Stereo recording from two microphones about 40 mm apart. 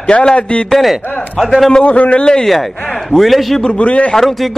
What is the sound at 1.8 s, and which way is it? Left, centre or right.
Speech, left.